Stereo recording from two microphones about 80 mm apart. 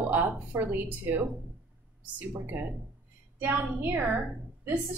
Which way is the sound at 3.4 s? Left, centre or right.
Right.